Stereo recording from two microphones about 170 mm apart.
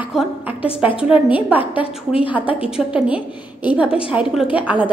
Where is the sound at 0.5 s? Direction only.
35° left (ahead or behind).